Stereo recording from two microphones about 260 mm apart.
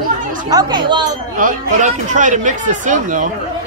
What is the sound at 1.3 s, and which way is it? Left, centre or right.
Speech, right.